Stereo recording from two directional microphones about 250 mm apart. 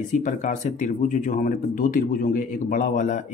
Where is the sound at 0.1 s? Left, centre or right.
Left.